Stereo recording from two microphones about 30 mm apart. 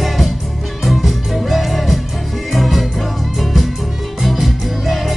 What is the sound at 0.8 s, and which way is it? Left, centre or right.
Music, centre.